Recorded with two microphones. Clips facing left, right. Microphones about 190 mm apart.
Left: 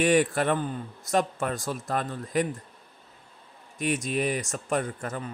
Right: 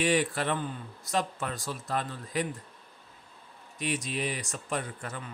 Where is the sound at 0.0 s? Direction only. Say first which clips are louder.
Left 5 dB; 50° left (ahead or behind).